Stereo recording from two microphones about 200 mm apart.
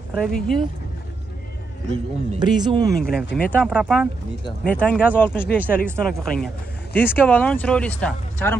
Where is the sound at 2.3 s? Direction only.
20° right (ahead or behind).